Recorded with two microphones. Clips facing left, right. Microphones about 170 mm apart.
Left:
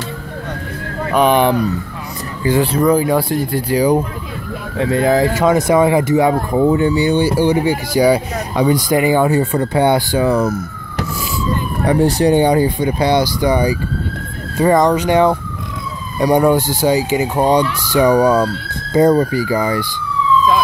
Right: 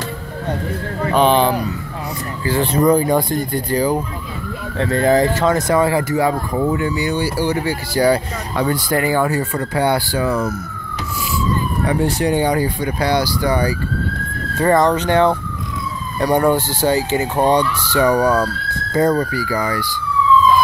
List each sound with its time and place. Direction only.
1.1 s speech: 10° left (ahead or behind)
2.6 s speech: 5° left (ahead or behind); by 10.4 s 25° left (ahead or behind)
11.8 s speech: 35° left (ahead or behind)